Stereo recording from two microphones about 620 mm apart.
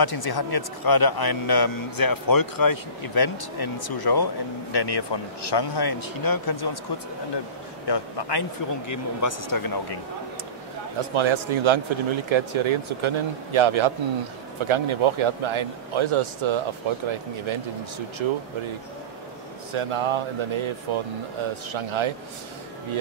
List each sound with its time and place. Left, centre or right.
0.0 s a man's voice: left
7.8 s a man's voice: left
11.0 s a man's voice: right
19.7 s a man's voice: right